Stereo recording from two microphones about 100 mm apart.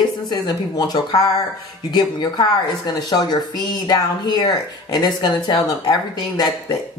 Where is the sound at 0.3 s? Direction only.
45° left (ahead or behind).